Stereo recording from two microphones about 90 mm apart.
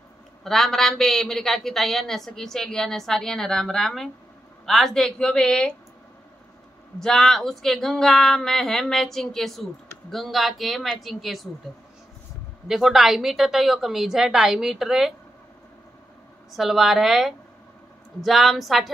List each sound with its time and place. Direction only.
0.4 s a woman's voice: 5° left (ahead or behind)
7.0 s a woman's voice: 5° left (ahead or behind)
12.6 s a woman's voice: 5° right (ahead or behind)
16.5 s a woman's voice: 5° right (ahead or behind)